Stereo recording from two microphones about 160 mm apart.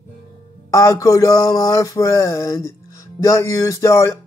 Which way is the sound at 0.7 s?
20° left (ahead or behind).